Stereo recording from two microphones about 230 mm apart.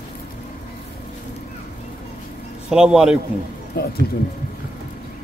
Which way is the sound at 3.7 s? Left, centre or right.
Left.